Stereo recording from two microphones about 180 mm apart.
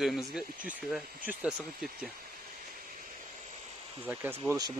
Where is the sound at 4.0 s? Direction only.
10° right (ahead or behind).